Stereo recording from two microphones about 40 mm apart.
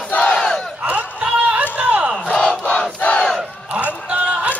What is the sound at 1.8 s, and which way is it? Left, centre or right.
Battle cry, right.